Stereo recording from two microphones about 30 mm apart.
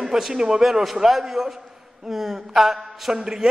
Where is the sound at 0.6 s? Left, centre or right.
Centre.